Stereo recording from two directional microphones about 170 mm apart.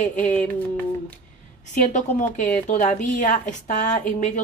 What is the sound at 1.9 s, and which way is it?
Speech, 45° left (ahead or behind).